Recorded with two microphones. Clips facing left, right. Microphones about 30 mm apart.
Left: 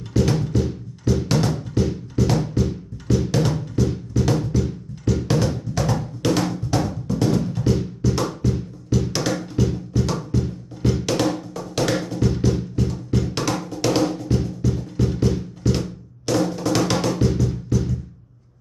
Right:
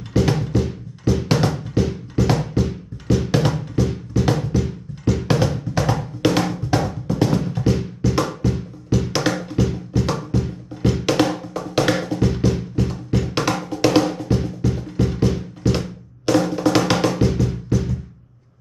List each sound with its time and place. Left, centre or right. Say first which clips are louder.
0.1 s music: right 1 dB; centre
5.0 s drum: right 2 dB; centre
8.4 s music: right 1 dB; centre
13.2 s drum: right 3 dB; right